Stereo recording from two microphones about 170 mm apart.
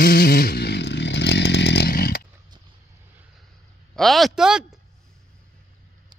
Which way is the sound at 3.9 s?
Centre (ahead or behind).